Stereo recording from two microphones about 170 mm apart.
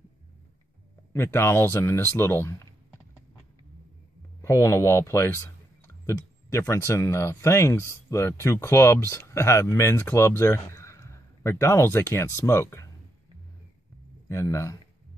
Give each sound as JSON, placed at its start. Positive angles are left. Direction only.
{"t": 1.1, "sound": "speech", "side_deg": 15}
{"t": 4.4, "sound": "speech", "side_deg": 15}
{"t": 6.0, "sound": "a sound", "side_deg": 15}
{"t": 6.9, "sound": "speech", "side_deg": 15}
{"t": 14.3, "sound": "speech", "side_deg": 15}